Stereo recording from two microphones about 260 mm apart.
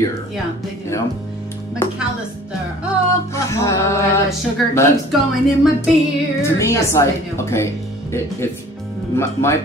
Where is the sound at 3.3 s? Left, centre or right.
Centre.